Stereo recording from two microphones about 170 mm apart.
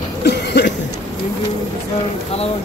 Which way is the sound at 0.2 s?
80° left.